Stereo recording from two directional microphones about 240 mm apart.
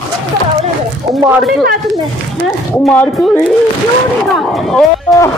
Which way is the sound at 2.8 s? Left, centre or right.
Centre.